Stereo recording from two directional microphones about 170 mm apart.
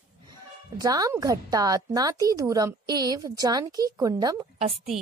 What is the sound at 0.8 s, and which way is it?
A woman's voice, 20° right (ahead or behind).